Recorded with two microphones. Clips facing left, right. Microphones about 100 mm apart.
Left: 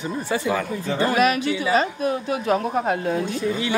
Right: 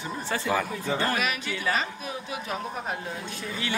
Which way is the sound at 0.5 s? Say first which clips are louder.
Left 3 dB; centre (ahead or behind).